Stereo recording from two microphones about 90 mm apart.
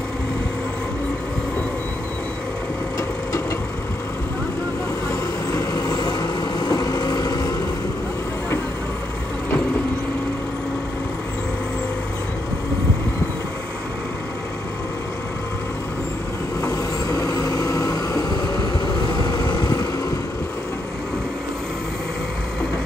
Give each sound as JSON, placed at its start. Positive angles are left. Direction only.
{"t": 5.5, "sound": "vehicle", "side_deg": 40}
{"t": 16.6, "sound": "vehicle", "side_deg": 40}